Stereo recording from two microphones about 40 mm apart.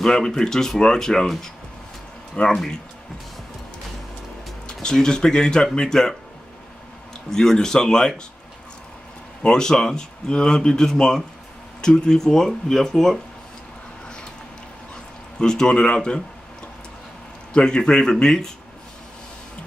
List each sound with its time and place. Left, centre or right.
0.0 s speech: centre
2.4 s speech: left
4.8 s speech: centre
7.2 s speech: centre
9.4 s speech: centre
15.3 s speech: centre
17.5 s speech: left